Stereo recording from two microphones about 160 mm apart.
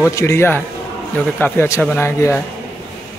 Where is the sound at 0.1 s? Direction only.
15° left (ahead or behind).